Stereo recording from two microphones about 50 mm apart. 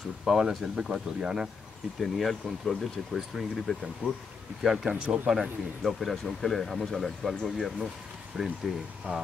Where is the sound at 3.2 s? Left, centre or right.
Centre.